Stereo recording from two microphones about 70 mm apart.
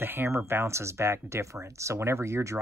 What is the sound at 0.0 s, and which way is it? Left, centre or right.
Speech, right.